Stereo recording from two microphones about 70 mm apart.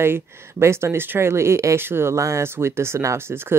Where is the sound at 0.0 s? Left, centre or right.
Right.